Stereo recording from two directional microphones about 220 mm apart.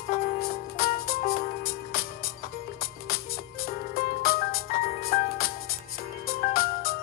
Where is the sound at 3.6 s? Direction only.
45° left (ahead or behind).